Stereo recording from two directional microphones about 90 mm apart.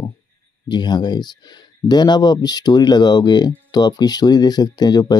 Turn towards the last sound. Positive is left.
turn(degrees=50)  # may be behind; listen again after turning